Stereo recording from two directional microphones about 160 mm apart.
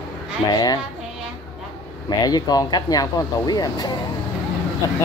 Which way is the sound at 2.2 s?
25° left (ahead or behind).